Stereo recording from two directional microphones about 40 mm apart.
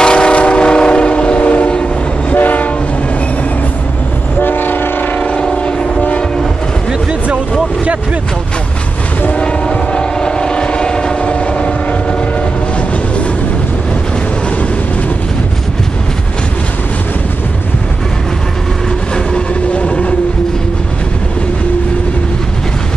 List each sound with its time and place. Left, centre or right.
0.0 s train: left
2.3 s train: left
4.4 s train: left
5.1 s train: left
9.3 s train: left
19.1 s vehicle: left